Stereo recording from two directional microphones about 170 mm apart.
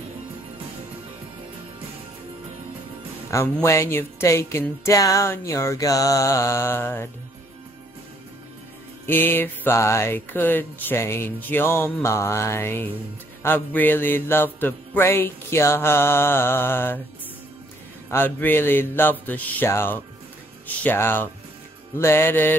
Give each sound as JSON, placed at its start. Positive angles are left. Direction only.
{"t": 3.5, "sound": "music", "side_deg": 15}
{"t": 9.0, "sound": "music", "side_deg": 10}
{"t": 18.1, "sound": "music", "side_deg": 10}